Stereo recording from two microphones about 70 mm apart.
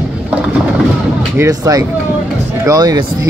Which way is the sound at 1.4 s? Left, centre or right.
Right.